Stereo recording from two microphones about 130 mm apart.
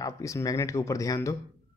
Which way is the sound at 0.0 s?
25° left (ahead or behind).